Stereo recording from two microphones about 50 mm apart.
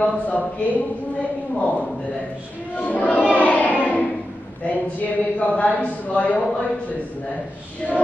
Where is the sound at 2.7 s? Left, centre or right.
Left.